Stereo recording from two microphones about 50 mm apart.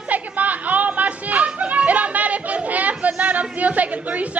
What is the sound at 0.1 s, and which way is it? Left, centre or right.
Music, right.